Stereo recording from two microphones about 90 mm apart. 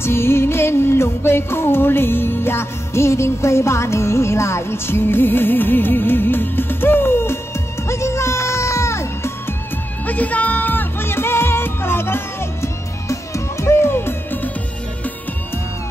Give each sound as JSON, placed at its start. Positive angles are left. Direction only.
{"t": 0.0, "sound": "music", "side_deg": 25}
{"t": 10.0, "sound": "music", "side_deg": 15}